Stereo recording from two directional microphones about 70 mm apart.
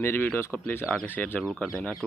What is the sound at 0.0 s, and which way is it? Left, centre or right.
Speech, left.